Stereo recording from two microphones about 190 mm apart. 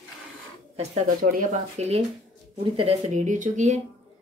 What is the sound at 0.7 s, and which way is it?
Speech, 40° right (ahead or behind).